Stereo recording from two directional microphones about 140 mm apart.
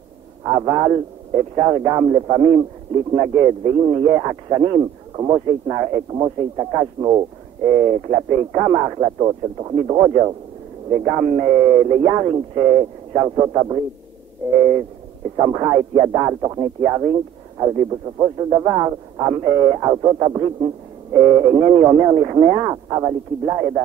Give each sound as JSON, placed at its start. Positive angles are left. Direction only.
{"t": 0.5, "sound": "a man's voice", "side_deg": -30}
{"t": 15.3, "sound": "a man's voice", "side_deg": -30}